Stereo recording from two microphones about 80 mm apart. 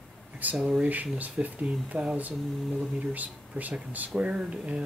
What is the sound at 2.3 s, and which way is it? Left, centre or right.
Speech, centre.